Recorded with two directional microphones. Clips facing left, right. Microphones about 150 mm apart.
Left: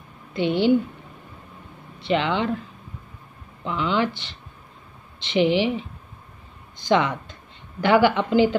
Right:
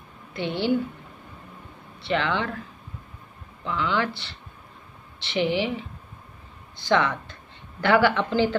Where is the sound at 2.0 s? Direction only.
15° left (ahead or behind).